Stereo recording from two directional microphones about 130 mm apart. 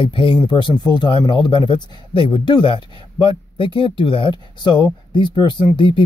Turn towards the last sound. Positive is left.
turn(degrees=40)  # may be behind; listen again after turning